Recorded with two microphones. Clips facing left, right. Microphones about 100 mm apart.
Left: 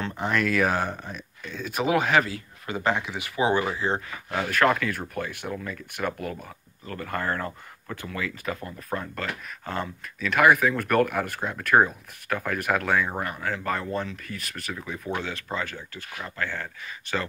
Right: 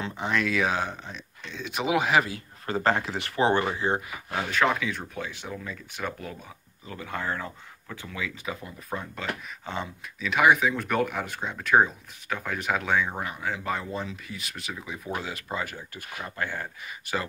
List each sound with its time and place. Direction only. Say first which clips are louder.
0.0 s speech: left 2 dB; centre (ahead or behind)
2.6 s speech: right 1 dB; 35° right (ahead or behind)
3.2 s speech: even; 10° left (ahead or behind)
3.7 s speech: even; 15° right (ahead or behind)
4.3 s speech: left 3 dB; centre (ahead or behind); by 16.6 s 15° right (ahead or behind)